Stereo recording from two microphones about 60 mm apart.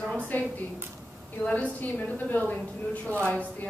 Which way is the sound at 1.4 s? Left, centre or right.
Left.